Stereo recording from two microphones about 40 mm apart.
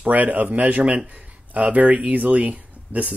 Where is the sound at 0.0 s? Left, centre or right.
Right.